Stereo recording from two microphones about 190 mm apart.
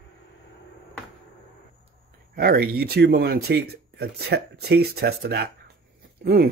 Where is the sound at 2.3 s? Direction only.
50° right (ahead or behind).